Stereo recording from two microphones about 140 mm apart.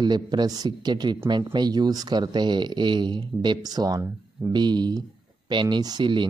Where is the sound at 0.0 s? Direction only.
30° right (ahead or behind).